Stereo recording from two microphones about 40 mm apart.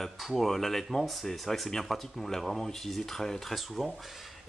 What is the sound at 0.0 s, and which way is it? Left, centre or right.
Speech, centre.